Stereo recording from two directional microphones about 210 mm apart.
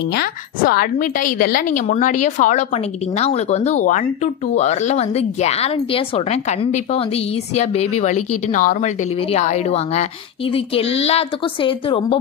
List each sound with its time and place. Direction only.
0.1 s a woman's voice: 45° left (ahead or behind); by 12.2 s 25° left (ahead or behind)